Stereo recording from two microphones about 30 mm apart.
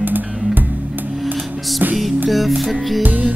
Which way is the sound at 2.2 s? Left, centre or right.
Centre.